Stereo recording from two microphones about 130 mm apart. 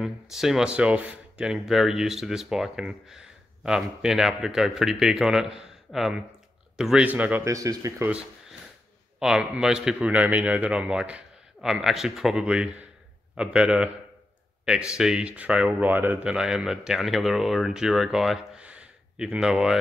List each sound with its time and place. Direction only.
0.0 s a man's voice: centre (ahead or behind)
7.4 s speech: 25° right (ahead or behind)
8.1 s a sound: 10° right (ahead or behind)
9.2 s a man's voice: 5° right (ahead or behind)